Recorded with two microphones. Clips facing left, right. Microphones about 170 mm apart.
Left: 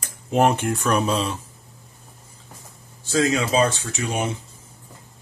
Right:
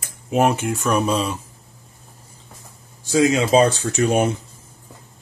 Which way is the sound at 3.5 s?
40° right (ahead or behind).